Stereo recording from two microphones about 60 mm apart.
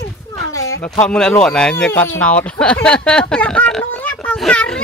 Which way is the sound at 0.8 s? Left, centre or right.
Centre.